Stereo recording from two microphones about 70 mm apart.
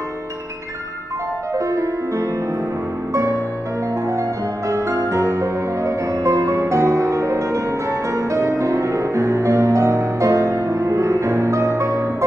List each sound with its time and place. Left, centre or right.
1.6 s music: right